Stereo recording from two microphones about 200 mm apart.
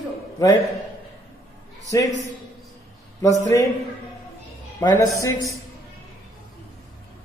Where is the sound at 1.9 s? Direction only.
15° left (ahead or behind).